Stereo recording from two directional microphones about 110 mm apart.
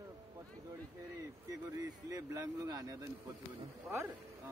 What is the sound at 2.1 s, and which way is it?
Speech, 35° right (ahead or behind).